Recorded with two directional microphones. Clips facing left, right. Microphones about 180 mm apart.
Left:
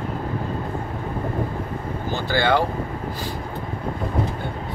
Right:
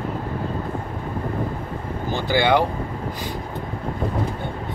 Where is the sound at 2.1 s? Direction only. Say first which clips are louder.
Right 2 dB; 15° right (ahead or behind).